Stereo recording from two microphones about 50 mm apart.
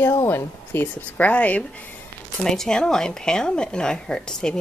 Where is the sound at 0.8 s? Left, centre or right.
Left.